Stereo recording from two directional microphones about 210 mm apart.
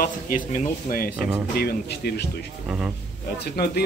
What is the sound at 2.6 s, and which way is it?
Speech, 5° right (ahead or behind).